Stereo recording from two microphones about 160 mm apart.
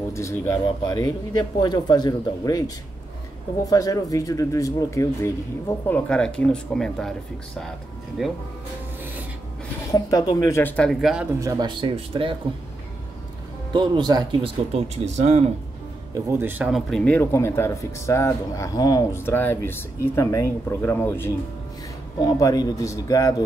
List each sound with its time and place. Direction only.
0.1 s speech: 20° left (ahead or behind)
3.7 s speech: 20° left (ahead or behind); by 8.3 s 5° right (ahead or behind)
9.8 s speech: 20° left (ahead or behind)
10.6 s speech: 5° left (ahead or behind)
11.3 s speech: 20° right (ahead or behind)
13.7 s speech: 25° right (ahead or behind)
14.7 s speech: 45° right (ahead or behind)
16.3 s speech: 15° right (ahead or behind)
17.0 s speech: 10° left (ahead or behind)
22.2 s speech: 25° left (ahead or behind)